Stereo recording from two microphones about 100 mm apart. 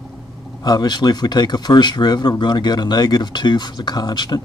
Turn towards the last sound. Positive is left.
turn(degrees=45)  # may be behind; listen again after turning